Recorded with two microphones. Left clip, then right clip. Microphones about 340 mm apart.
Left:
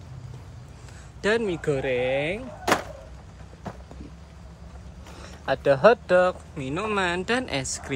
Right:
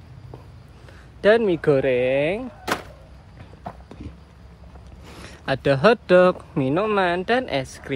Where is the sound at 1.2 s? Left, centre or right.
Centre.